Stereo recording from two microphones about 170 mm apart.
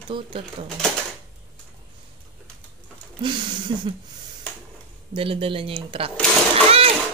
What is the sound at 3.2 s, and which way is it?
Speech, 30° right (ahead or behind).